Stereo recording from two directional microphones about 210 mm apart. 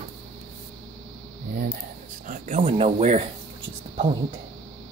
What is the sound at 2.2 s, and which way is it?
Speech, 35° right (ahead or behind).